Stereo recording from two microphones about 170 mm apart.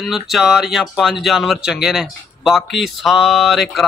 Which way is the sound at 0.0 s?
Centre (ahead or behind).